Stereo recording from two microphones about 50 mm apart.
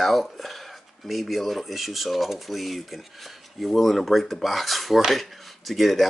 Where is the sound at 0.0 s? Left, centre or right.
Centre.